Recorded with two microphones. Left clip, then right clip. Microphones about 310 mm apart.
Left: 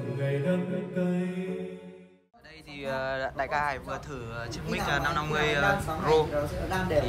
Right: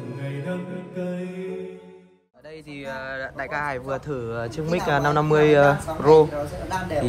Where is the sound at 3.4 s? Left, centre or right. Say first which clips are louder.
Right 3 dB; centre.